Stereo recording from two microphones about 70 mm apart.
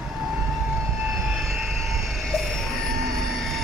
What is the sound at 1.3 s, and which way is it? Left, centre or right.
Vehicle, centre.